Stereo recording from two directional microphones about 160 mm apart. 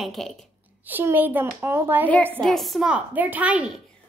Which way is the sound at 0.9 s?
10° right (ahead or behind).